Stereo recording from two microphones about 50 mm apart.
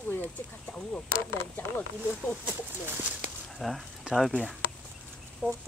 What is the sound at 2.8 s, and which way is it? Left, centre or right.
Speech, right.